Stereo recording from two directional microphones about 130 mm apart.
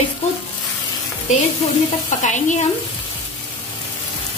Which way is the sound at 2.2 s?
70° left (ahead or behind).